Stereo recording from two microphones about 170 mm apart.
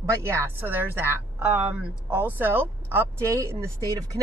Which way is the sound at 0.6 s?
10° right (ahead or behind).